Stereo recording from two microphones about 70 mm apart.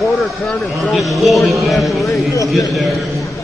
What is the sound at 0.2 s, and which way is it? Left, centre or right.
Speech, centre.